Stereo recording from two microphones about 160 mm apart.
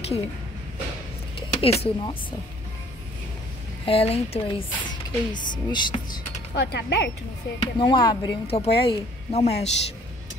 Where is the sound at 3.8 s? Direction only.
35° left (ahead or behind).